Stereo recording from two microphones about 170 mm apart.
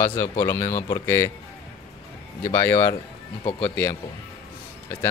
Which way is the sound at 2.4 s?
15° left (ahead or behind).